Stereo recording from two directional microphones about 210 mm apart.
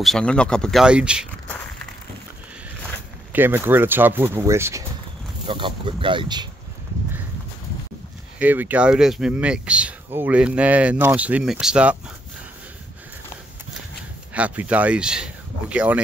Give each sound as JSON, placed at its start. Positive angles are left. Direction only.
{"t": 0.0, "sound": "speech", "side_deg": 5}
{"t": 3.3, "sound": "speech", "side_deg": -10}
{"t": 5.5, "sound": "speech", "side_deg": -25}
{"t": 8.4, "sound": "speech", "side_deg": -10}
{"t": 14.3, "sound": "speech", "side_deg": -5}